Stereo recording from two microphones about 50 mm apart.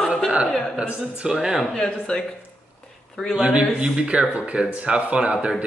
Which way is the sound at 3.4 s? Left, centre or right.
Right.